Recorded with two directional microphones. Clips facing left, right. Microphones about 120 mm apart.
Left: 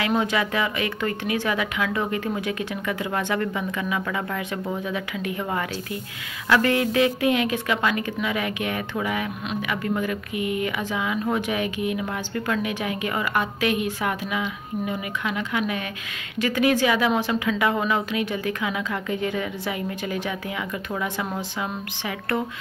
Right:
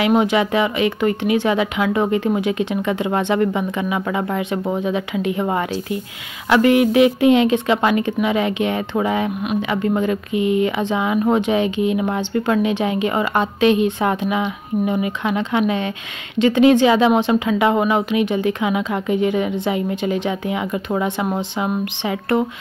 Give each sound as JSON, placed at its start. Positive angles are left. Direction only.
{"t": 0.0, "sound": "speech", "side_deg": -20}